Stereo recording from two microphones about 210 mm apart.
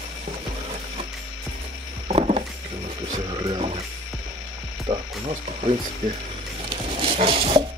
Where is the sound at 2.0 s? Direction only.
30° right (ahead or behind).